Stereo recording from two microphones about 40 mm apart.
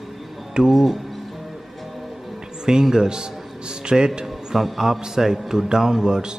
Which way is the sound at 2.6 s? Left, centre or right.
Centre.